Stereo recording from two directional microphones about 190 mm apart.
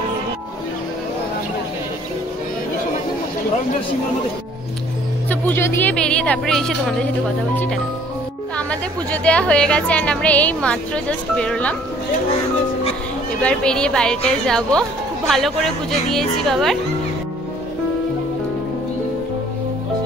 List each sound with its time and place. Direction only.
5.3 s a woman's voice: 10° left (ahead or behind)
13.4 s a woman's voice: 5° left (ahead or behind)